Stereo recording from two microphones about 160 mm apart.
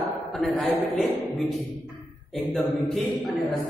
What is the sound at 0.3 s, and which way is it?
Speech, centre (ahead or behind).